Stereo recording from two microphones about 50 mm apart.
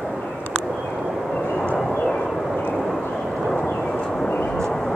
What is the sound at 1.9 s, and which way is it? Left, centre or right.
Vehicle, centre.